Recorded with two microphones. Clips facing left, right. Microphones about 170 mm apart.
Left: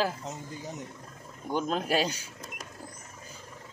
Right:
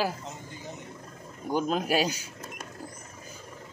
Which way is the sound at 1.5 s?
10° right (ahead or behind).